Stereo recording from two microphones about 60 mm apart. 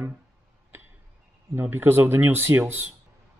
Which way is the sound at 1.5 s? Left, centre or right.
Right.